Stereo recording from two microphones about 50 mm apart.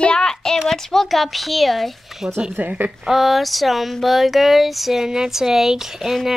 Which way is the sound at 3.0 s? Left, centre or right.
Centre.